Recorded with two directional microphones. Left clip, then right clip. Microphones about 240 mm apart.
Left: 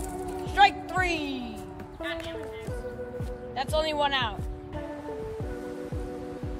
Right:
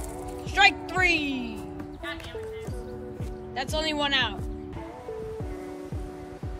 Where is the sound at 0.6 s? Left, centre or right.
Centre.